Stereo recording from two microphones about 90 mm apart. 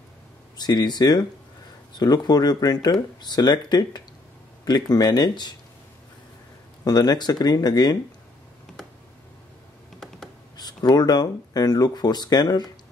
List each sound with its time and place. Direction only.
0.6 s speech: 50° left (ahead or behind)
6.8 s speech: 50° left (ahead or behind)
10.6 s speech: 50° left (ahead or behind)